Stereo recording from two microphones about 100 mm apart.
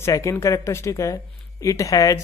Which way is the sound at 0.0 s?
30° left (ahead or behind).